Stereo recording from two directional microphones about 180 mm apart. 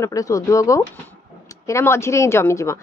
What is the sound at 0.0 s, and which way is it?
A woman's voice, 20° left (ahead or behind).